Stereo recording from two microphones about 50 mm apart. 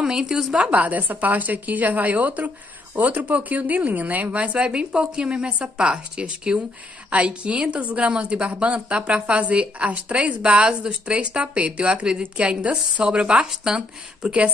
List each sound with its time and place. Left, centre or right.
0.0 s speech: centre
0.6 s a woman's voice: right